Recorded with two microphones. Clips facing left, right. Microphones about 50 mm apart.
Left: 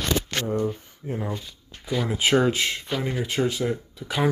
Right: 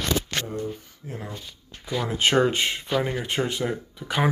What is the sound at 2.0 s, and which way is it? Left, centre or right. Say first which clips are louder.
Speech: even; centre.